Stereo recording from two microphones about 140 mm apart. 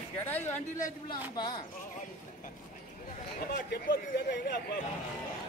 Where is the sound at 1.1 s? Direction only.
30° left (ahead or behind).